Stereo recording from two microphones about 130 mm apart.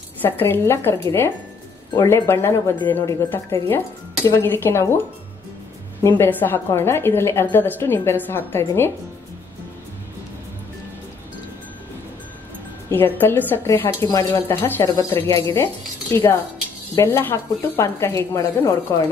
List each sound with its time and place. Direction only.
0.2 s a woman's voice: 15° left (ahead or behind)
2.0 s a woman's voice: 20° left (ahead or behind)
6.0 s a woman's voice: 20° left (ahead or behind)
12.9 s speech: 15° left (ahead or behind)
14.5 s speech: 15° left (ahead or behind)